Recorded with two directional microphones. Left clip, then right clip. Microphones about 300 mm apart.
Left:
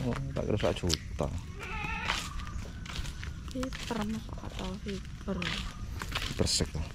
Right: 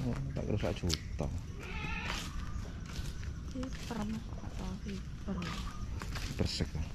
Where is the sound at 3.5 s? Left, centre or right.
Centre.